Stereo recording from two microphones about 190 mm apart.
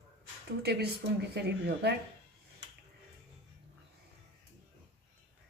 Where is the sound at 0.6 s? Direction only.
60° right (ahead or behind).